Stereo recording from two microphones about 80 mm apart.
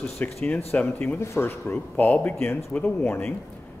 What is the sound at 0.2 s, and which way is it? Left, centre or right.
Speech, left.